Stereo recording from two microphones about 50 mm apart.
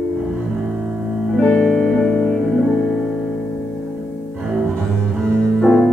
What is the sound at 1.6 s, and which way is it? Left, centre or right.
Music, centre.